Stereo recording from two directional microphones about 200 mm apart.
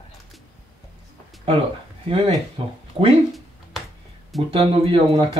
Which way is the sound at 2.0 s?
30° right (ahead or behind).